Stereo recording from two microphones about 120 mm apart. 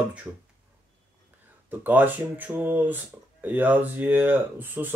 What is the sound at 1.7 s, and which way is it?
Speech, 15° right (ahead or behind).